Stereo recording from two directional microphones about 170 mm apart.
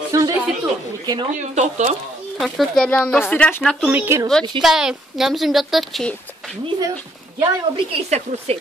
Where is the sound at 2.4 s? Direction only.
5° left (ahead or behind).